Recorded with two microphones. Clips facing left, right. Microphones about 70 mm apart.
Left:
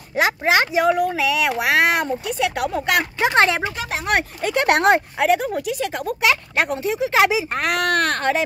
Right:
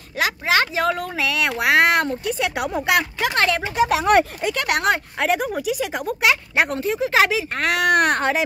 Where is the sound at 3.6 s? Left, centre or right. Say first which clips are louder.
Right 6 dB; right.